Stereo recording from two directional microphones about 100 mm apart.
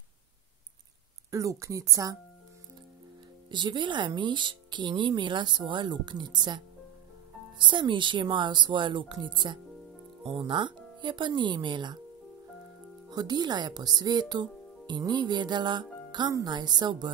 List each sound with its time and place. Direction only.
1.3 s speech: 35° right (ahead or behind)
3.4 s speech: 50° right (ahead or behind)
13.1 s speech: 45° right (ahead or behind)